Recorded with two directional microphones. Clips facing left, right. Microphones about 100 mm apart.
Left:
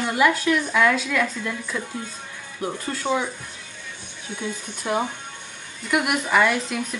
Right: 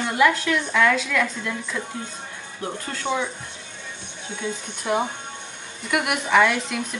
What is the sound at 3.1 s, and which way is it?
Speech, centre (ahead or behind).